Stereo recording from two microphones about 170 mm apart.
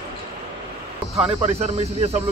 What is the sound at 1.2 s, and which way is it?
Speech, 35° right (ahead or behind).